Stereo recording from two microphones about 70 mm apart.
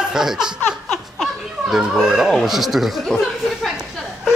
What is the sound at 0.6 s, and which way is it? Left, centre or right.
Laughter, centre.